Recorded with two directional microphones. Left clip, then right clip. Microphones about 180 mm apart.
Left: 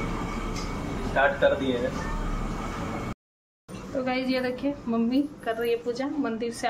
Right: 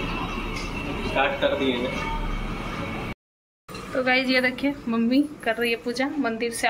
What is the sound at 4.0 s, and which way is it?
A woman's voice, centre (ahead or behind).